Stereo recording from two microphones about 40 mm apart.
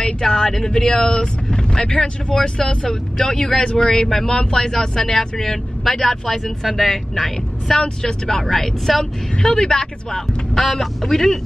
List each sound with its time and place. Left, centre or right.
0.0 s speech: centre
8.5 s a man's voice: centre
9.4 s speech: centre
10.5 s a man's voice: centre